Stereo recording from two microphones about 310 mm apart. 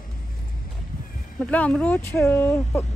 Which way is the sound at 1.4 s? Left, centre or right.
Centre.